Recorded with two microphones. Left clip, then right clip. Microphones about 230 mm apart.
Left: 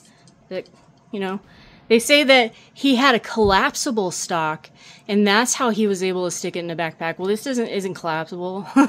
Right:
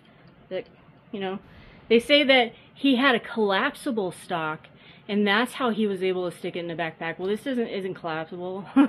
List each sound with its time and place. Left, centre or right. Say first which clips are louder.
1.1 s a woman's voice: left 5 dB; left